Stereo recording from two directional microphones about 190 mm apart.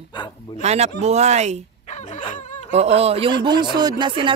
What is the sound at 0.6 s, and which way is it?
Speech, 35° right (ahead or behind).